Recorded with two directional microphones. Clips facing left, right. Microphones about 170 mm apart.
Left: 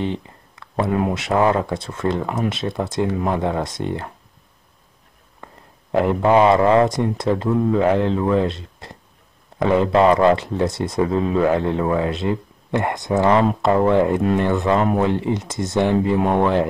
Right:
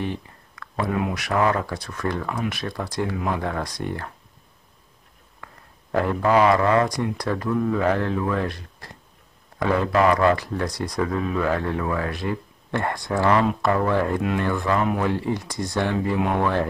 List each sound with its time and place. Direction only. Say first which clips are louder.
0.0 s speech: left 4 dB; 25° left (ahead or behind)
5.4 s speech: left 4 dB; 20° left (ahead or behind)